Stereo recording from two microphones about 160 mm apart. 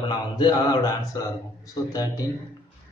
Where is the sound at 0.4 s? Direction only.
25° left (ahead or behind).